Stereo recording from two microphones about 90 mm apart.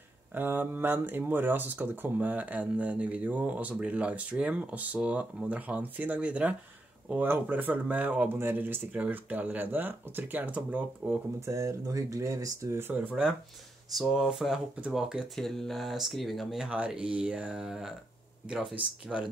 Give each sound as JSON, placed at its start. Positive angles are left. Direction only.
{"t": 0.3, "sound": "speech", "side_deg": -20}
{"t": 11.4, "sound": "speech", "side_deg": -35}
{"t": 12.9, "sound": "speech", "side_deg": -15}
{"t": 13.9, "sound": "speech", "side_deg": -5}
{"t": 19.1, "sound": "speech", "side_deg": -10}